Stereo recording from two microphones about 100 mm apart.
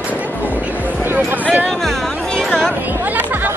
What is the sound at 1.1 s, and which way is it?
Music, 20° right (ahead or behind).